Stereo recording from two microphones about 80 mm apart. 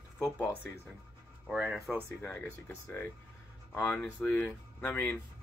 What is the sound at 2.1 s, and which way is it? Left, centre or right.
Speech, left.